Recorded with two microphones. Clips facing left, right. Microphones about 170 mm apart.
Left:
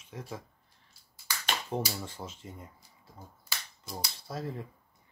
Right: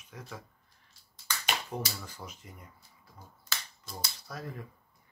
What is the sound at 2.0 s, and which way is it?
Speech, 25° left (ahead or behind).